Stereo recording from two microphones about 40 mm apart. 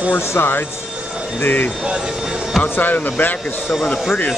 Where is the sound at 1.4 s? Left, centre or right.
Left.